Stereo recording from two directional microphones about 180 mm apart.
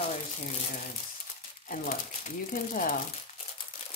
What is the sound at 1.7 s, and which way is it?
Speech, 50° left (ahead or behind).